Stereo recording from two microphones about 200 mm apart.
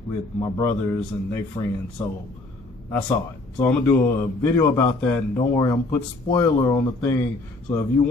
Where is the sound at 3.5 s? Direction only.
10° left (ahead or behind).